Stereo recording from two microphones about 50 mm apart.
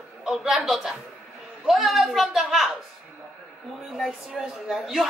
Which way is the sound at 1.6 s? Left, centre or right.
Centre.